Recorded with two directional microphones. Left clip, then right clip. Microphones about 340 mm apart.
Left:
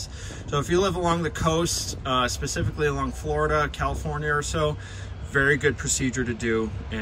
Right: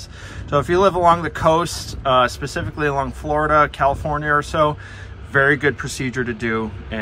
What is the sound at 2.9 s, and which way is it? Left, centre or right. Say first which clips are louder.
Speech: right 7 dB; right.